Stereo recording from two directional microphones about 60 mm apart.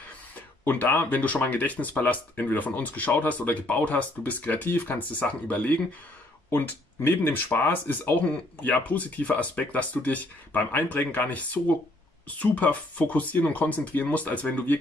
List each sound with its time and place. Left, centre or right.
0.7 s speech: left
6.5 s speech: left